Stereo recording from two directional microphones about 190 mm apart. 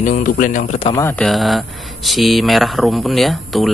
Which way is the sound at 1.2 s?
Centre (ahead or behind).